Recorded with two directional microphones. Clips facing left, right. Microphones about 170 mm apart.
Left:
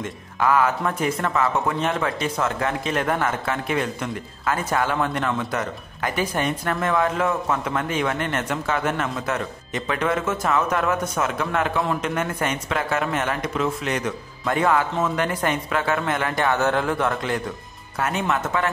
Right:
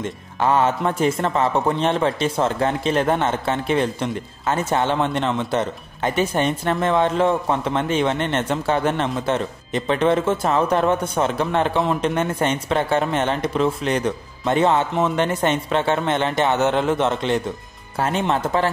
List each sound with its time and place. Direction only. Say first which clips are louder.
0.0 s speech: right 2 dB; 30° right (ahead or behind)